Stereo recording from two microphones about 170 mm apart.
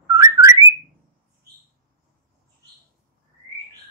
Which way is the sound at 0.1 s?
20° right (ahead or behind).